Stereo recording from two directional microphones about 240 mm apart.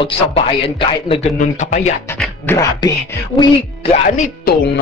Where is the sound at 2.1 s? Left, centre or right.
Centre.